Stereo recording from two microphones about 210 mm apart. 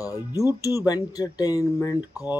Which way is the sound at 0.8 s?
20° left (ahead or behind).